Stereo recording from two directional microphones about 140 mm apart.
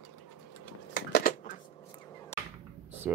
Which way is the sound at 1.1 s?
90° left.